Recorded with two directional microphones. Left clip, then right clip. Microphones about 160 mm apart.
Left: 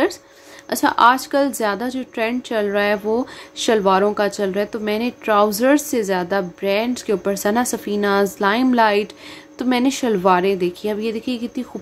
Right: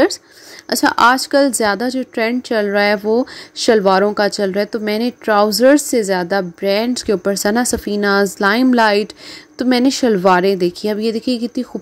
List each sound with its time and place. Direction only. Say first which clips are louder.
0.7 s a woman's voice: right 2 dB; 40° right (ahead or behind)